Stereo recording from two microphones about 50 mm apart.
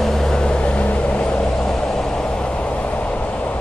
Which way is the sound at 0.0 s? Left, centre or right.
Centre.